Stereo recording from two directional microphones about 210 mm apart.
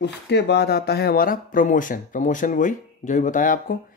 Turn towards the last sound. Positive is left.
turn(degrees=40)  # may be behind; listen again after turning